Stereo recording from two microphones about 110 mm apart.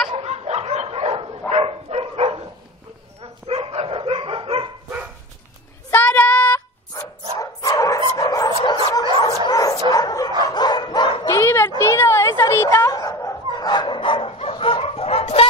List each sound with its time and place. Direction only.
0.1 s dog: 75° right (ahead or behind); by 4.6 s 55° right (ahead or behind)
5.9 s child singing: 15° left (ahead or behind)
7.3 s dog: 30° left (ahead or behind)
8.6 s bow-wow: 40° left (ahead or behind)
9.5 s dog: 35° left (ahead or behind)
11.3 s a sound: 25° left (ahead or behind)
11.8 s dog: 25° left (ahead or behind); by 15.4 s 60° left (ahead or behind)